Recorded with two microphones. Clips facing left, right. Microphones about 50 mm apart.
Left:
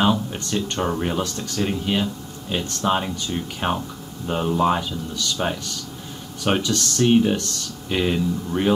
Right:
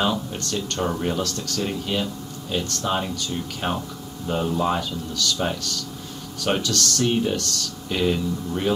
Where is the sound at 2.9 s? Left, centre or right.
Centre.